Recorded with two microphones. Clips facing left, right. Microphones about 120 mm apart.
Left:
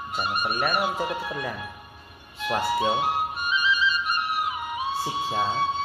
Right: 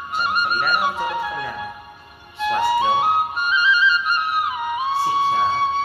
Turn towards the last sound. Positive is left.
turn(degrees=-60)  # may be behind; listen again after turning